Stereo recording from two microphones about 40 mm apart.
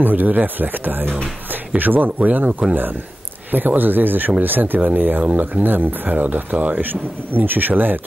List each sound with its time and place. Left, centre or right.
0.0 s speech: right
2.7 s speech: right
6.1 s speech: right